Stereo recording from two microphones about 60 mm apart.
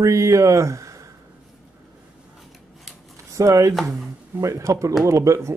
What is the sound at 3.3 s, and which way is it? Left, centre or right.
Speech, right.